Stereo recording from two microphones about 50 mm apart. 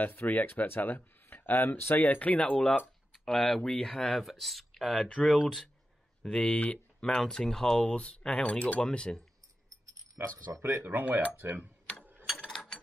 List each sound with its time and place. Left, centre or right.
0.0 s speech: left
3.1 s speech: centre
4.9 s speech: centre
6.2 s speech: left
7.0 s speech: centre
10.2 s speech: right
12.4 s mechanisms: centre